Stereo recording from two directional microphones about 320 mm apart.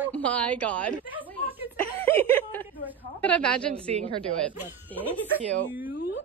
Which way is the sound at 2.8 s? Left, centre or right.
Centre.